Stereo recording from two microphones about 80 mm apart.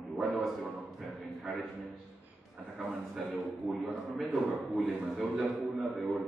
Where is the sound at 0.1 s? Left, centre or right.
Centre.